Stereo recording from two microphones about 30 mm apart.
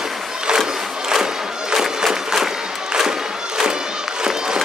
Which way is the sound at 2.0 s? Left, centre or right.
Centre.